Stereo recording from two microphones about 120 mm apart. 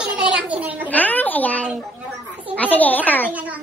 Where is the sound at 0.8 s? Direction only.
15° left (ahead or behind).